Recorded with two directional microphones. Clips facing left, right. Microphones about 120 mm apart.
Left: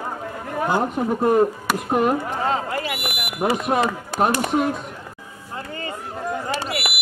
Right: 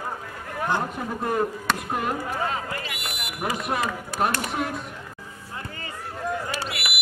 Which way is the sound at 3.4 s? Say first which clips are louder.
Left 7 dB; 25° left (ahead or behind).